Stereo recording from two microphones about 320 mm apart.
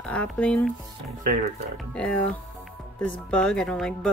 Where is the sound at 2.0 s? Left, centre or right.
Centre.